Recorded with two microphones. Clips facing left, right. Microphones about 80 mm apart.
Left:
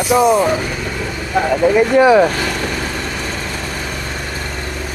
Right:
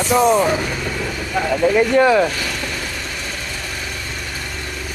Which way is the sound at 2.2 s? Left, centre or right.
Left.